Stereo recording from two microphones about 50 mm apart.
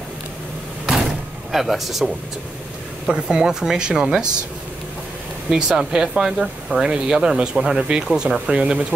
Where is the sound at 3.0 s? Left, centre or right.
Centre.